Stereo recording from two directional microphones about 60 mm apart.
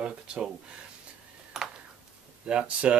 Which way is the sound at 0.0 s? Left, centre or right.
Centre.